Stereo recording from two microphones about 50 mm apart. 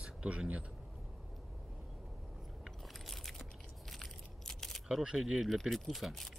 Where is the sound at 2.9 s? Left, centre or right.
Centre.